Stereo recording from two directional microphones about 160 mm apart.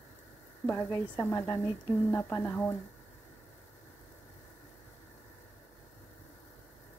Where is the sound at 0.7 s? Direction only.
15° left (ahead or behind).